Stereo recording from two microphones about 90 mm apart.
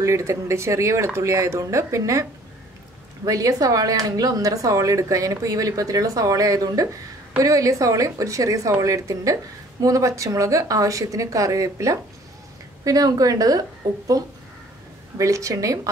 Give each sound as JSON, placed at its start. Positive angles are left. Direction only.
{"t": 0.0, "sound": "a woman's voice", "side_deg": -35}
{"t": 3.3, "sound": "a woman's voice", "side_deg": -40}